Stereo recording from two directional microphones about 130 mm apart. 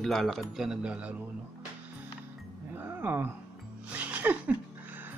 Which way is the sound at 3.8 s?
10° right (ahead or behind).